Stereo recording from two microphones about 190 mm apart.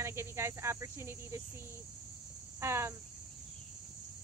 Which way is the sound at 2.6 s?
15° right (ahead or behind).